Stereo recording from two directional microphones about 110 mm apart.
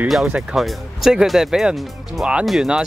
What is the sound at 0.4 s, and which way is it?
Speech, centre (ahead or behind).